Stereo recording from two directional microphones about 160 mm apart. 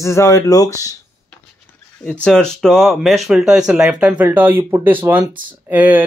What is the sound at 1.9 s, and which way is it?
Speech, 10° left (ahead or behind).